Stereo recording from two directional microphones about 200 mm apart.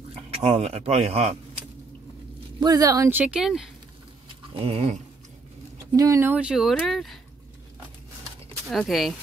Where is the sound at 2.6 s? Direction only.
20° right (ahead or behind); by 3.7 s centre (ahead or behind).